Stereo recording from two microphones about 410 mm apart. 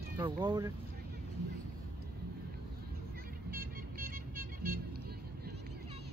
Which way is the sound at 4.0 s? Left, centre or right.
Right.